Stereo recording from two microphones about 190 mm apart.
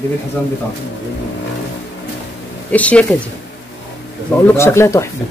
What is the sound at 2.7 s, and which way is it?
Speech, 5° left (ahead or behind).